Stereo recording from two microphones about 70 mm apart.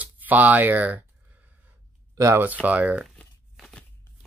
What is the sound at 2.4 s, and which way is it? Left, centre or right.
Speech, right.